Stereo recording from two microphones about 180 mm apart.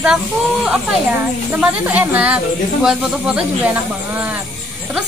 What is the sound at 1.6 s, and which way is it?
A woman's voice, 10° right (ahead or behind).